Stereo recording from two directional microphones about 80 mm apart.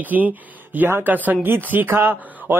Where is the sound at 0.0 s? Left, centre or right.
Right.